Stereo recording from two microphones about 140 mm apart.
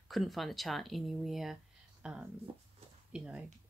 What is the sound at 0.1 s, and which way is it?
Speech, centre (ahead or behind).